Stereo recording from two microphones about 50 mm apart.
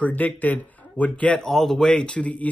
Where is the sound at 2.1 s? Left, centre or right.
Left.